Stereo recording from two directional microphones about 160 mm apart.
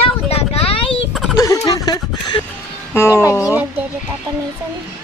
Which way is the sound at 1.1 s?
Centre (ahead or behind).